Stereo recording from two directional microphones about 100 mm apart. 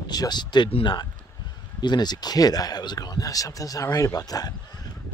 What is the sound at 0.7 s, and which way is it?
Speech, 70° left (ahead or behind).